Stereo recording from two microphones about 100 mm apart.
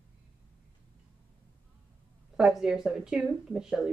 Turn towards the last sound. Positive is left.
turn(degrees=-5)  # may be behind; listen again after turning